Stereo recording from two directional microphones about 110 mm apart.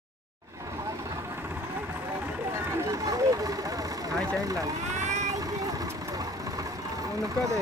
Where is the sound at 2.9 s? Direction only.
35° right (ahead or behind).